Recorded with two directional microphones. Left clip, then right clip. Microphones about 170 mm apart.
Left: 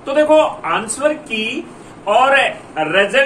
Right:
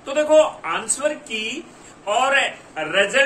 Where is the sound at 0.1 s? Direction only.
15° right (ahead or behind).